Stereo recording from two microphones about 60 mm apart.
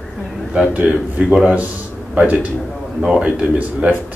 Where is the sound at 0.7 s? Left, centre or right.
Right.